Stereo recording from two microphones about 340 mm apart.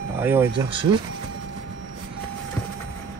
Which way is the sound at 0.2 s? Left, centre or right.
Centre.